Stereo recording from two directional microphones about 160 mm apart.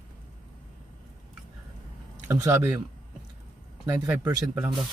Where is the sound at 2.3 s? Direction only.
15° right (ahead or behind).